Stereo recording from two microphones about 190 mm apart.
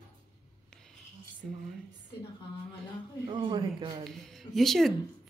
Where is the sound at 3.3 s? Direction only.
25° right (ahead or behind).